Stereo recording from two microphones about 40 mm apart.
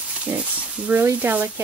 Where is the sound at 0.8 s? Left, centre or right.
Right.